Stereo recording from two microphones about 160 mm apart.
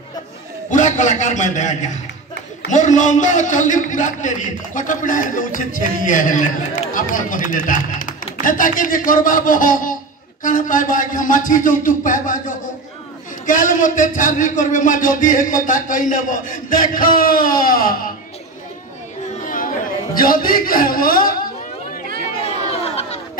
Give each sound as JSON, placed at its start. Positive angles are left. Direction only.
{"t": 0.7, "sound": "a man's voice", "side_deg": 50}
{"t": 19.4, "sound": "chatter", "side_deg": 55}
{"t": 20.2, "sound": "a man's voice", "side_deg": 65}
{"t": 22.4, "sound": "crowd", "side_deg": 40}